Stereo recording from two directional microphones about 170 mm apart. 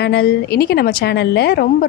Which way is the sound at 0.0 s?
70° left (ahead or behind).